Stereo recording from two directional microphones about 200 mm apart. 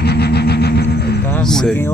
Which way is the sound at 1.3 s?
5° left (ahead or behind).